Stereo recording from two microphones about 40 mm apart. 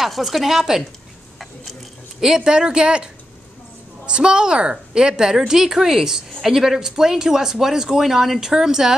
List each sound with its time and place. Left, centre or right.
0.0 s speech: centre
1.4 s a sound: centre
2.2 s a woman's voice: centre